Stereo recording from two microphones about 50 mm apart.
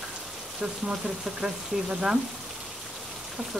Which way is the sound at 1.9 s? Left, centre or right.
Centre.